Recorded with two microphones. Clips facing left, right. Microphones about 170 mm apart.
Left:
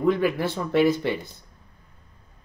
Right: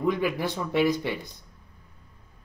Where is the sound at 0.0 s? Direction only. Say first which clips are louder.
Left 4 dB; 15° right (ahead or behind).